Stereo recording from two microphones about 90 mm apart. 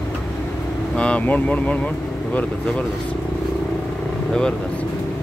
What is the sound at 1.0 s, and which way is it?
Speech, 15° left (ahead or behind).